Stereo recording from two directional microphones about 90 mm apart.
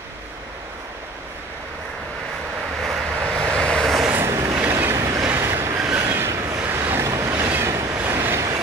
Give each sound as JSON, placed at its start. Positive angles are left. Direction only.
{"t": 2.8, "sound": "vehicle", "side_deg": 0}
{"t": 3.4, "sound": "vehicle", "side_deg": 10}
{"t": 4.1, "sound": "vehicle", "side_deg": -30}
{"t": 4.6, "sound": "train", "side_deg": -25}
{"t": 5.8, "sound": "train", "side_deg": -10}
{"t": 6.0, "sound": "train", "side_deg": -30}
{"t": 6.7, "sound": "waves", "side_deg": -30}
{"t": 7.4, "sound": "train", "side_deg": -25}
{"t": 8.0, "sound": "vehicle", "side_deg": -25}